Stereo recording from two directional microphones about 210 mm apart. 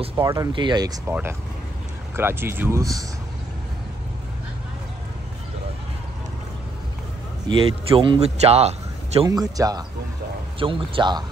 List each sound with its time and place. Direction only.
0.2 s speech: 15° right (ahead or behind)
2.1 s speech: 10° right (ahead or behind)
7.4 s a man's voice: 25° right (ahead or behind)
9.2 s a man's voice: 15° right (ahead or behind)